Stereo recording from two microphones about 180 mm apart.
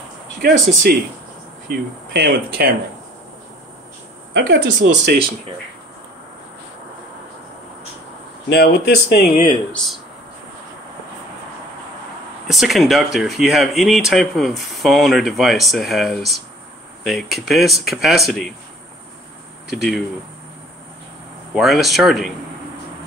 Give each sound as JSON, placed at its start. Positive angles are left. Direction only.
{"t": 0.4, "sound": "speech", "side_deg": -60}
{"t": 4.3, "sound": "speech", "side_deg": -75}
{"t": 8.5, "sound": "speech", "side_deg": 60}
{"t": 9.7, "sound": "speech", "side_deg": 5}
{"t": 12.4, "sound": "speech", "side_deg": 0}
{"t": 19.7, "sound": "speech", "side_deg": 0}
{"t": 21.5, "sound": "speech", "side_deg": 0}